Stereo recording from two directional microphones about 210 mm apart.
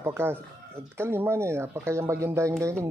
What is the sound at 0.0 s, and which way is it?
Speech, 10° right (ahead or behind).